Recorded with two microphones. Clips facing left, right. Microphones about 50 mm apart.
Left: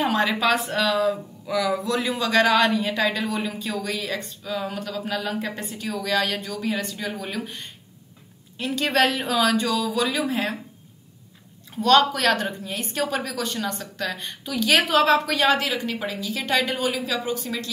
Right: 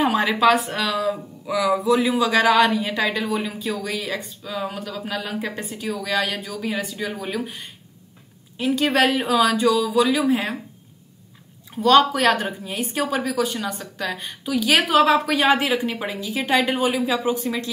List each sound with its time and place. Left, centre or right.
0.0 s speech: centre
11.7 s a woman's voice: centre